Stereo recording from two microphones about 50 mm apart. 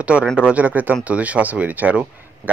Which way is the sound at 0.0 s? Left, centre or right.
Right.